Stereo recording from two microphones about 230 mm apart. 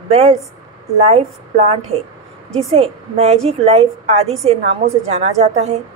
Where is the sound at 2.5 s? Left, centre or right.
Right.